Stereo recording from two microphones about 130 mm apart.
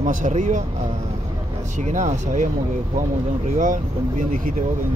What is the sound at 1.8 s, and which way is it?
Speech, 65° right (ahead or behind).